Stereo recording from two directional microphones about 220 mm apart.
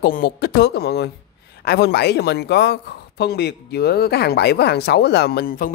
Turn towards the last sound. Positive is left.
turn(degrees=40)  # may be behind; listen again after turning